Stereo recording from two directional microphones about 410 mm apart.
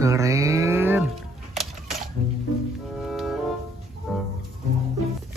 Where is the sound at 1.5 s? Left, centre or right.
Centre.